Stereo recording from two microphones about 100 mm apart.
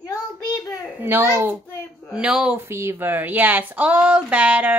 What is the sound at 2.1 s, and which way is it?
Speech, 10° right (ahead or behind).